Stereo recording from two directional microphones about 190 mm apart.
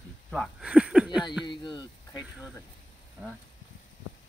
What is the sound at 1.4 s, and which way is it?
Speech, 25° left (ahead or behind).